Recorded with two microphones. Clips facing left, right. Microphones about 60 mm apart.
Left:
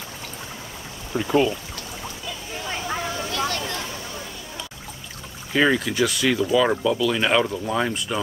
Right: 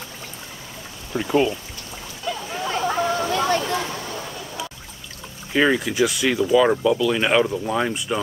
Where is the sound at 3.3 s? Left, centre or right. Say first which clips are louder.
Right 5 dB; right.